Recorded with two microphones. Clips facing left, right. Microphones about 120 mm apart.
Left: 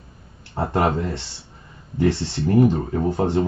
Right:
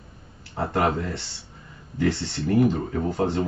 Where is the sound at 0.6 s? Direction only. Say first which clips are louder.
Left 2 dB; 20° left (ahead or behind).